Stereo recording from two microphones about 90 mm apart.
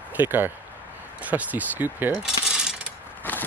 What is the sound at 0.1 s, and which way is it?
Speech, 25° right (ahead or behind).